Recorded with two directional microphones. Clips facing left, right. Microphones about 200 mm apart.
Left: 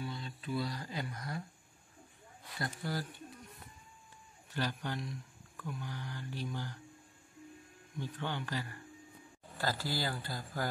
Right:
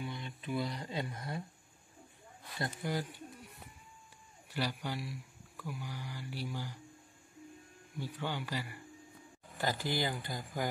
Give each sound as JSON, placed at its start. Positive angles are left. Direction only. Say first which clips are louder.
{"t": 0.0, "sound": "speech", "louder": "even", "side_deg": -20}
{"t": 2.6, "sound": "speech", "louder": "right 2 dB", "side_deg": -20}
{"t": 4.5, "sound": "speech", "louder": "even", "side_deg": -10}
{"t": 8.0, "sound": "speech", "louder": "even", "side_deg": -10}